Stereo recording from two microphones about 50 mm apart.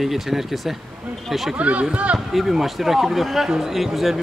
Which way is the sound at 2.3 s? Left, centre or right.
Centre.